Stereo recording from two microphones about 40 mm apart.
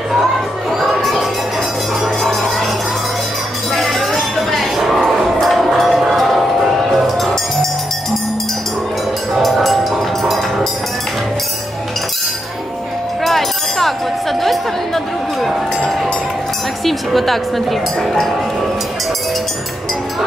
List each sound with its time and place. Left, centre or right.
0.7 s a sound: centre
3.7 s chink: centre
5.9 s music: centre
9.4 s music: centre
13.2 s a sound: centre
16.8 s chink: centre